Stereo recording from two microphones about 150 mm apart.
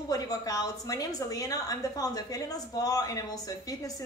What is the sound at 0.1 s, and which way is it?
A woman's voice, 25° left (ahead or behind).